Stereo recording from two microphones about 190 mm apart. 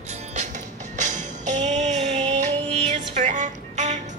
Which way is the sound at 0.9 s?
40° right (ahead or behind).